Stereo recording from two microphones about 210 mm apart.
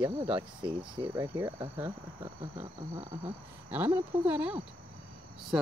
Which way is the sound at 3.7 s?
10° right (ahead or behind).